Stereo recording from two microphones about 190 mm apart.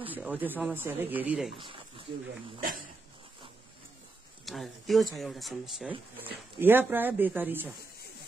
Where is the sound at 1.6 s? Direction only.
25° right (ahead or behind).